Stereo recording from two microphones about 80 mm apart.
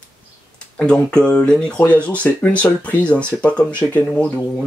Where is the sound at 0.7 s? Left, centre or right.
Centre.